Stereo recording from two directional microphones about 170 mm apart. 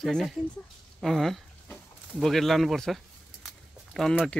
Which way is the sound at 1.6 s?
Centre (ahead or behind).